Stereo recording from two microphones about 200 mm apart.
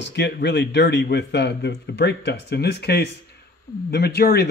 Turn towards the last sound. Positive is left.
turn(degrees=55)  # may be behind; listen again after turning